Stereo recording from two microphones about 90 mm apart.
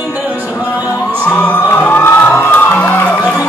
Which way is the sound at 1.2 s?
15° left (ahead or behind).